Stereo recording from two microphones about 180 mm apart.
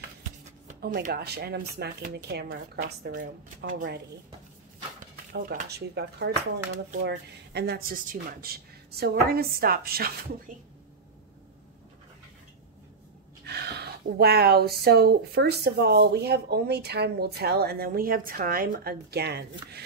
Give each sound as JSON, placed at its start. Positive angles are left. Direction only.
{"t": 0.7, "sound": "speech", "side_deg": -60}
{"t": 5.3, "sound": "speech", "side_deg": -55}
{"t": 13.5, "sound": "speech", "side_deg": -65}